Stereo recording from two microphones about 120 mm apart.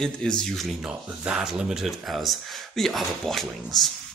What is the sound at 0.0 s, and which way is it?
Speech, 5° left (ahead or behind).